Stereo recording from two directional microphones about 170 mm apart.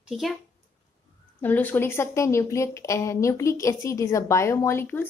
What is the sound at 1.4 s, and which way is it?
A woman's voice, 10° left (ahead or behind).